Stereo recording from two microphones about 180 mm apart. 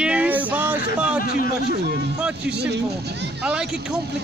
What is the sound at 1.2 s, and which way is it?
Speech, 50° left (ahead or behind).